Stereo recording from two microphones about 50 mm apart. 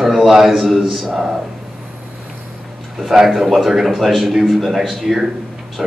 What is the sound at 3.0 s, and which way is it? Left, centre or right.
A man's voice, centre.